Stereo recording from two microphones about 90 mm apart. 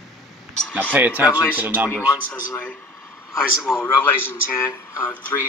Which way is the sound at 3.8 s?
25° left (ahead or behind).